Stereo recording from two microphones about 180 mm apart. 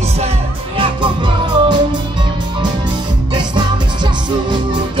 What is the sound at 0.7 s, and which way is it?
Music, 25° right (ahead or behind).